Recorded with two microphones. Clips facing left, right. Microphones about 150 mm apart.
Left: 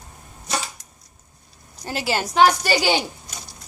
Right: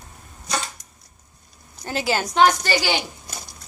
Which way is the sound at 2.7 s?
20° left (ahead or behind).